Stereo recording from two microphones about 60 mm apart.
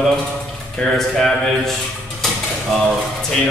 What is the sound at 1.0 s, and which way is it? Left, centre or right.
Speech, centre.